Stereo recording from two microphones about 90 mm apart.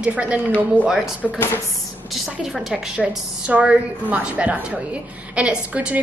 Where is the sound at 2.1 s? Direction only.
Centre (ahead or behind).